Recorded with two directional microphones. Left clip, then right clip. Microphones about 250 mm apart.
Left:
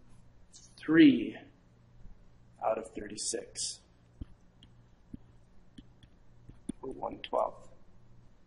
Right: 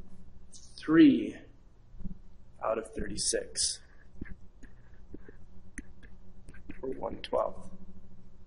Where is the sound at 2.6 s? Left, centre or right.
Centre.